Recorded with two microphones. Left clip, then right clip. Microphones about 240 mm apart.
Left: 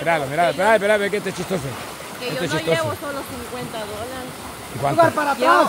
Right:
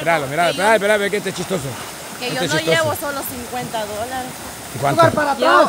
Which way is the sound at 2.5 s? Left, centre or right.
Right.